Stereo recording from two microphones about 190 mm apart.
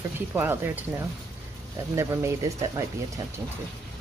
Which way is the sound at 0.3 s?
10° right (ahead or behind).